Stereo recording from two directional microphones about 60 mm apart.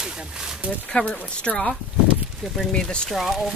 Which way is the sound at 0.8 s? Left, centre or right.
Left.